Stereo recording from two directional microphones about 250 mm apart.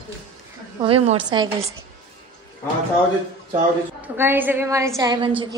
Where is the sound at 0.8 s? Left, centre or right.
Right.